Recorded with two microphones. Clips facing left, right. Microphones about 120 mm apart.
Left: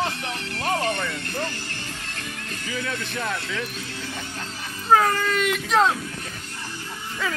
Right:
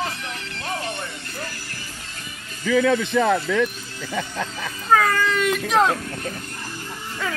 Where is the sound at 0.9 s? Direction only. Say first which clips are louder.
Left 4 dB; 90° left.